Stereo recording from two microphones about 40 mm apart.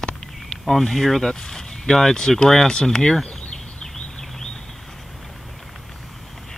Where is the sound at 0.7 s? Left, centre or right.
Centre.